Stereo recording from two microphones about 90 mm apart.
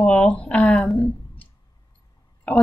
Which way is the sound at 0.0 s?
10° left (ahead or behind).